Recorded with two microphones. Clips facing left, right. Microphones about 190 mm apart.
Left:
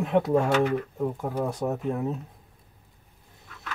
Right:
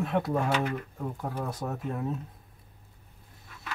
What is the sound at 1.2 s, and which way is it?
Speech, 20° left (ahead or behind).